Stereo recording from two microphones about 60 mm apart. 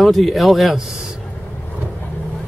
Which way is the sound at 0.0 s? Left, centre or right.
Centre.